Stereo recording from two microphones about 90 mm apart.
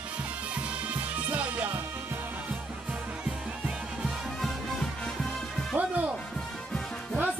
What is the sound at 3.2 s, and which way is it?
Music, 10° right (ahead or behind).